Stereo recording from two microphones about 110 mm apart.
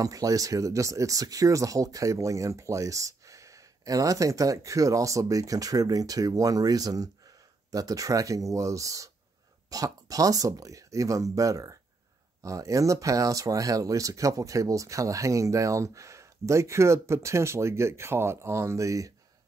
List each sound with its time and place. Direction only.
0.0 s speech: 30° right (ahead or behind)